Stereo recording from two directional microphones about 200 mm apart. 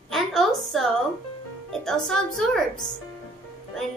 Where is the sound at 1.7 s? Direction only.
Centre (ahead or behind).